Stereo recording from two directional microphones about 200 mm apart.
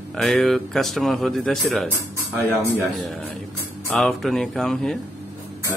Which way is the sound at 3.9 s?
Centre (ahead or behind).